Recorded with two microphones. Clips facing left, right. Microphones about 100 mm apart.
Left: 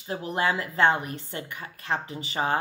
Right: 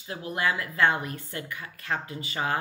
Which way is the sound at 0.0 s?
25° left (ahead or behind).